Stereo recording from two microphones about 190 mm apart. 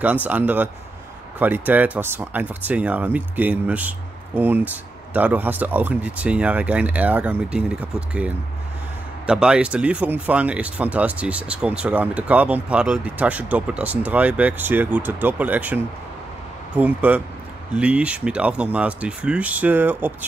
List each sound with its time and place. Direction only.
0.0 s speech: 10° right (ahead or behind)